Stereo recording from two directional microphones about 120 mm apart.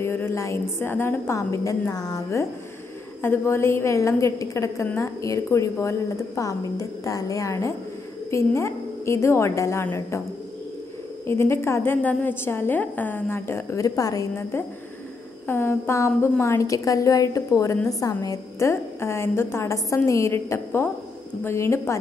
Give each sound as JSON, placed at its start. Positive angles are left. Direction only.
{"t": 0.0, "sound": "a woman's voice", "side_deg": 20}
{"t": 3.2, "sound": "a woman's voice", "side_deg": 20}
{"t": 11.2, "sound": "a woman's voice", "side_deg": 20}